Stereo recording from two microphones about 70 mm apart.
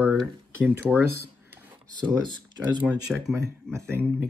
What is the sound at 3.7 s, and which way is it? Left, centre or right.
Speech, right.